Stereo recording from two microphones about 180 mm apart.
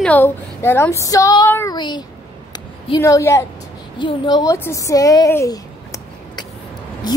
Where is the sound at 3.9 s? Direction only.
25° left (ahead or behind).